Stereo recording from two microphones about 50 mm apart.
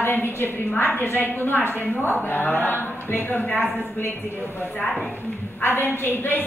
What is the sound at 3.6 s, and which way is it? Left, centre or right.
Speech, right.